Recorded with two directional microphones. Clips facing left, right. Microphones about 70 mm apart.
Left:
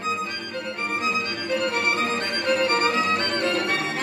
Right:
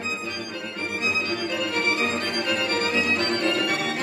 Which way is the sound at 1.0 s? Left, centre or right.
Left.